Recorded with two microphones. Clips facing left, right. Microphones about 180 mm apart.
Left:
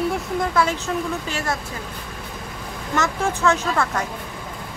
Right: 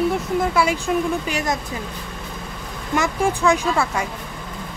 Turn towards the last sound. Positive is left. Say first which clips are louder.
# right 2 dB
turn(degrees=-10)  # may be behind; listen again after turning